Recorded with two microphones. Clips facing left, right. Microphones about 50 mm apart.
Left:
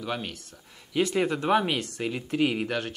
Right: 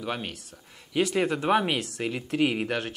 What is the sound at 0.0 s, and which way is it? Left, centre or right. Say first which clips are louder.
Speech: even; centre.